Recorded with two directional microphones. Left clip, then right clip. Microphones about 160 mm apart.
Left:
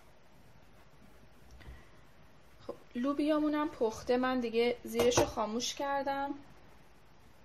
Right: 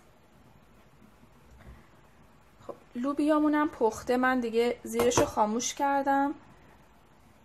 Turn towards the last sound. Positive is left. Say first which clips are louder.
# right 8 dB
turn(degrees=-35)  # may be behind; listen again after turning